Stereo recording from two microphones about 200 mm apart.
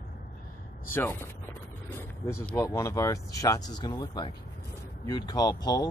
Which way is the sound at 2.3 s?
15° left (ahead or behind).